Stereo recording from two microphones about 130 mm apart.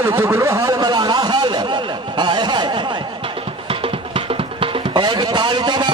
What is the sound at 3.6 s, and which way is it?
Music, 45° right (ahead or behind).